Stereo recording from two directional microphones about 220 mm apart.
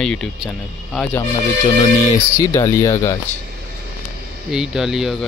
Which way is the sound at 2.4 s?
15° left (ahead or behind).